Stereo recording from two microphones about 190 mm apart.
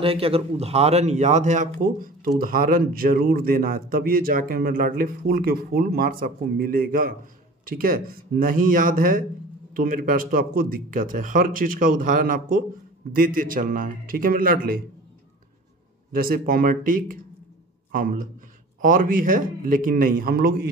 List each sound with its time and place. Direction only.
0.0 s speech: 30° right (ahead or behind); by 14.8 s 50° right (ahead or behind)
16.1 s speech: 50° right (ahead or behind)